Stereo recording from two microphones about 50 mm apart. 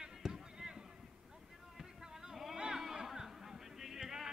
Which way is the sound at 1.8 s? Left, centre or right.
Centre.